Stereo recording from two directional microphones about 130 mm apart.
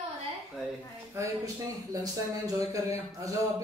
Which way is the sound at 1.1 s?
25° right (ahead or behind).